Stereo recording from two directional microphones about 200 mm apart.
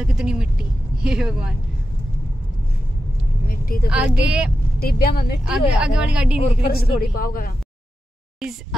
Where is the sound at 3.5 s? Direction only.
45° left (ahead or behind).